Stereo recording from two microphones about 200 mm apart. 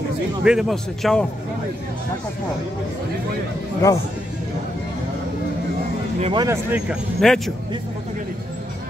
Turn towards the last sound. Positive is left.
turn(degrees=0)  # may be behind; listen again after turning